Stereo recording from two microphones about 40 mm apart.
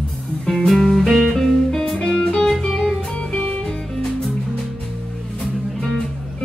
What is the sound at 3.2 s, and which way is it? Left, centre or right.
Music, left.